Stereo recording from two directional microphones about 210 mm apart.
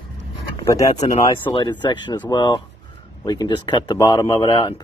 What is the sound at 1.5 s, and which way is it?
Speech, 20° left (ahead or behind).